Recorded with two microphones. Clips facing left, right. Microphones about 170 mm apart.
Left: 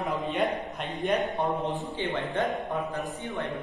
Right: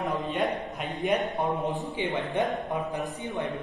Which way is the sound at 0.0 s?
Centre (ahead or behind).